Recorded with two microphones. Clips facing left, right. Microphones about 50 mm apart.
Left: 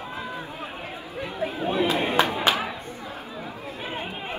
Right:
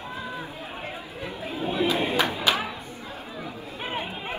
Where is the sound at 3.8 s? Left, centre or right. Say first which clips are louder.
Right 2 dB; right.